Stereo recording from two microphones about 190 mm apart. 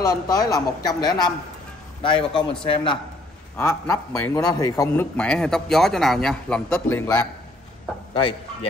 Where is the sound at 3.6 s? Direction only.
15° left (ahead or behind).